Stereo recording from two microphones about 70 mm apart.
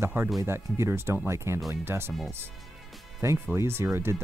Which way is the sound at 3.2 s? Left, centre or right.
Right.